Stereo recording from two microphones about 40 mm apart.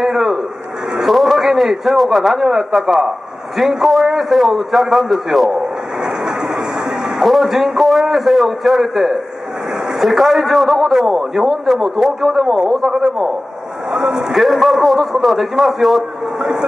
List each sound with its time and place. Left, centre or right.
0.1 s a man's voice: centre
6.0 s vehicle: centre
7.2 s a man's voice: centre
7.8 s a man's voice: centre
11.1 s a man's voice: centre
11.6 s a man's voice: centre